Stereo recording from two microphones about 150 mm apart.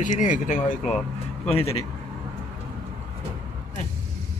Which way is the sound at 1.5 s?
40° left (ahead or behind).